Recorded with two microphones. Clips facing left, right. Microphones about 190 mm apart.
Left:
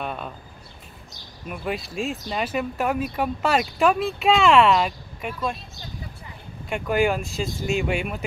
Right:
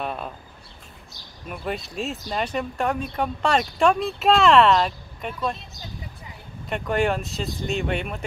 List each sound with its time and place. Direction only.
0.0 s a sound: centre (ahead or behind)
1.5 s speech: centre (ahead or behind)
6.7 s speech: centre (ahead or behind)